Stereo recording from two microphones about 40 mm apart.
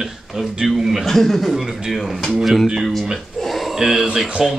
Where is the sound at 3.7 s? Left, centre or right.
Centre.